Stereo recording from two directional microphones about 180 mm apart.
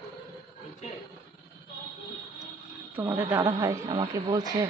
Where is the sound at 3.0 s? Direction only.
10° right (ahead or behind).